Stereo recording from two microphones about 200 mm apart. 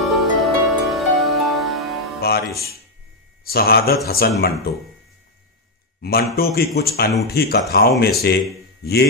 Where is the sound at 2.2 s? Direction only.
50° left (ahead or behind).